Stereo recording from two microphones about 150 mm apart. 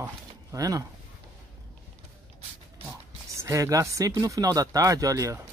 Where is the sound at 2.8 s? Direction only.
20° right (ahead or behind).